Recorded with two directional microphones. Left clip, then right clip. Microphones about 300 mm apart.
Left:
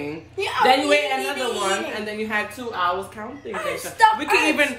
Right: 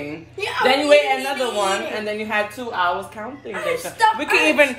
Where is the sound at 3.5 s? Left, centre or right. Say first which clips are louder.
Right 3 dB; left.